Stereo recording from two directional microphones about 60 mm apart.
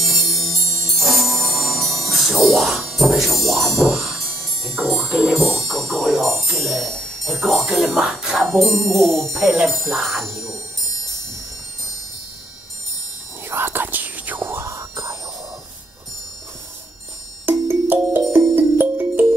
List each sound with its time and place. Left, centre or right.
0.0 s music: centre
8.5 s speech: centre
9.3 s speech: centre
9.7 s speech: centre
13.5 s whispering: right
14.5 s whispering: right
17.5 s music: right